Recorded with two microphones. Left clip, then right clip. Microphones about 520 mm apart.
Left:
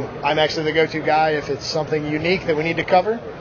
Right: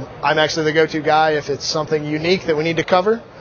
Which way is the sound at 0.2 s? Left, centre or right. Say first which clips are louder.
Right 3 dB; right.